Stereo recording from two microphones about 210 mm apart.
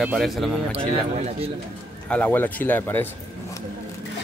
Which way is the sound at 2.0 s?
5° left (ahead or behind).